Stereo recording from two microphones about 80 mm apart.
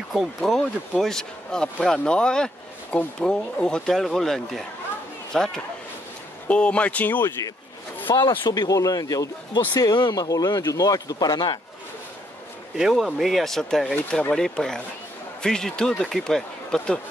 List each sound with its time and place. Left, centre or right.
0.1 s speech: centre; by 7.3 s left
8.1 s speech: left
9.8 s a man's voice: left
10.2 s a man's voice: left
12.7 s speech: centre